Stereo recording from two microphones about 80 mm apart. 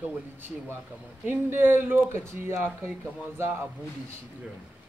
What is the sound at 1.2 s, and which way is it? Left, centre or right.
A man's voice, right.